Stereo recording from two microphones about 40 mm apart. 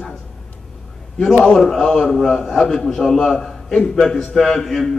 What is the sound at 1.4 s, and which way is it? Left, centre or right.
A man's voice, centre.